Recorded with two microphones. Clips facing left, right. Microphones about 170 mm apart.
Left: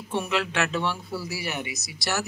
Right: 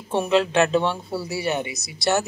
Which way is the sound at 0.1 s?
30° right (ahead or behind).